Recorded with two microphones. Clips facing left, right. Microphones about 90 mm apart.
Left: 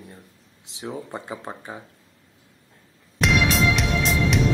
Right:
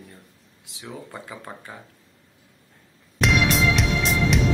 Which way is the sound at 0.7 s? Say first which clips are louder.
Left 5 dB; 25° left (ahead or behind).